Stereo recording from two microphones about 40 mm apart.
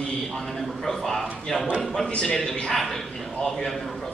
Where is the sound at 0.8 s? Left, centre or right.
Centre.